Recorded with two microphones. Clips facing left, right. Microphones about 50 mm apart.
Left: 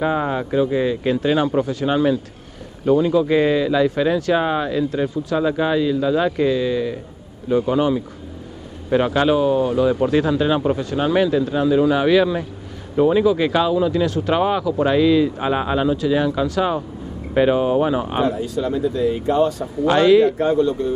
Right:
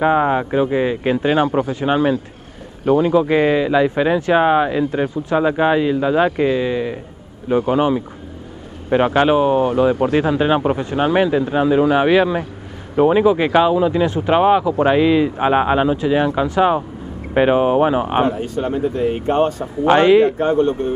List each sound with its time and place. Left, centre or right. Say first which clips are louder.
0.0 s speech: right 5 dB; right
2.8 s speech: right 2 dB; right
18.2 s speech: right 1 dB; right
19.9 s speech: right 2 dB; right
20.3 s speech: right 1 dB; right